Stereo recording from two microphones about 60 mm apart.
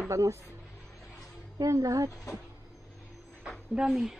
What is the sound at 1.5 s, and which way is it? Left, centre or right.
Speech, right.